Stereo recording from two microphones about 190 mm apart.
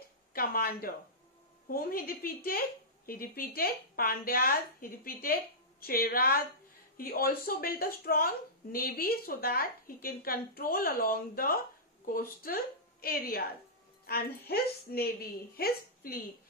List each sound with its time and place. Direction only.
0.3 s a woman's voice: 50° left (ahead or behind)